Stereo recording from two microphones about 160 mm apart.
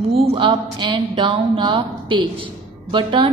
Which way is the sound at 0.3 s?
30° right (ahead or behind).